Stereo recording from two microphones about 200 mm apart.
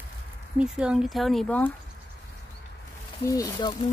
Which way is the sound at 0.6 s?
5° right (ahead or behind).